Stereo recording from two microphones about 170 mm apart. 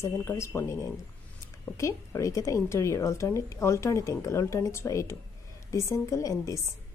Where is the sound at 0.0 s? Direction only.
15° left (ahead or behind).